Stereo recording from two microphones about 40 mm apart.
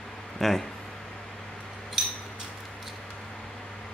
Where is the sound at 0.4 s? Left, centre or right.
Centre.